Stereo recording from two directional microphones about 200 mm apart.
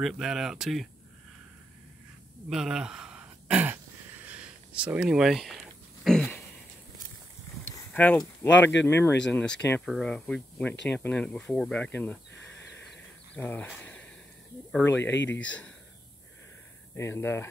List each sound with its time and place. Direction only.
0.0 s speech: centre (ahead or behind)
2.5 s a sound: 5° right (ahead or behind)
7.7 s a sound: 10° left (ahead or behind)
8.5 s speech: 10° left (ahead or behind)
13.4 s speech: 10° left (ahead or behind)
15.0 s speech: 65° left (ahead or behind)
16.9 s speech: 10° left (ahead or behind)